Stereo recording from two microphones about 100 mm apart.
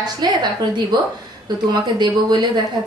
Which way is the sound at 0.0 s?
45° right (ahead or behind).